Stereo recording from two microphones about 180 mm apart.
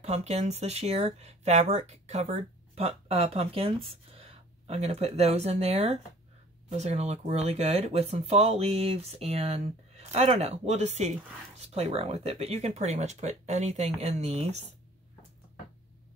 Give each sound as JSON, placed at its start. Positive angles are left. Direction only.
{"t": 0.0, "sound": "speech", "side_deg": -35}